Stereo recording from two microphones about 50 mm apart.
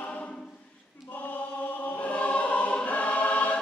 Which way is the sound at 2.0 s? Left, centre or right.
Left.